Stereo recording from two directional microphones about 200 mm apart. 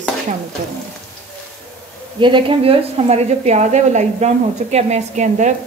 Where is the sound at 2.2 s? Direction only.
25° right (ahead or behind).